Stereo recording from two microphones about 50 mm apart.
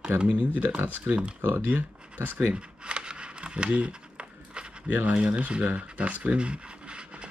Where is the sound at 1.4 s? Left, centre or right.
Right.